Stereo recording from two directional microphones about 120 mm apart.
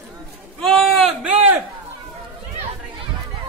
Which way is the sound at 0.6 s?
5° left (ahead or behind).